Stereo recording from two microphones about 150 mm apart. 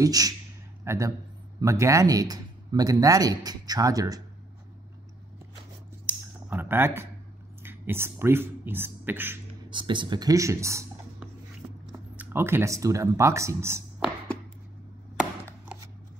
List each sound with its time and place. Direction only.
0.0 s speech: 25° right (ahead or behind)
6.0 s a sound: 15° right (ahead or behind)
7.6 s speech: 15° right (ahead or behind)
9.7 s speech: 30° right (ahead or behind)